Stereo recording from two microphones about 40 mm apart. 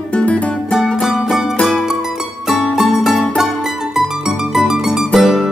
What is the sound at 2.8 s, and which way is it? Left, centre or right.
Music, centre.